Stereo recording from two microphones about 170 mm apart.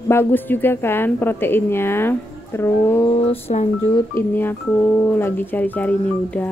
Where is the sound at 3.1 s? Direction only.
35° left (ahead or behind).